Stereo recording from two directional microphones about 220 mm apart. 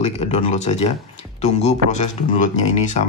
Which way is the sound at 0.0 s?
30° left (ahead or behind).